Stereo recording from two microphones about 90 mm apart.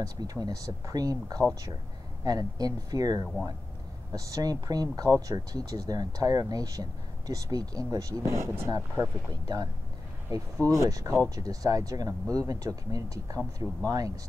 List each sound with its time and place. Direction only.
0.0 s speech: 45° right (ahead or behind)
9.3 s speech: 45° right (ahead or behind)